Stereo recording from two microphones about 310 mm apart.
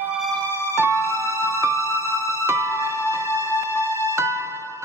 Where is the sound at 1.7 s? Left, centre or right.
Centre.